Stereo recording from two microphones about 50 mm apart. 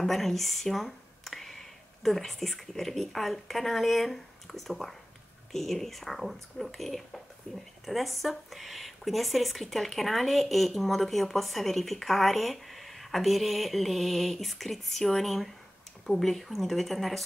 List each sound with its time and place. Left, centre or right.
0.0 s speech: centre